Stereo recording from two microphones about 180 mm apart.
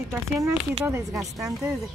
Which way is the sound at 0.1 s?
15° right (ahead or behind).